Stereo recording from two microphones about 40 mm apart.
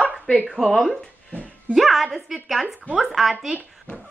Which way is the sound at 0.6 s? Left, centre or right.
Centre.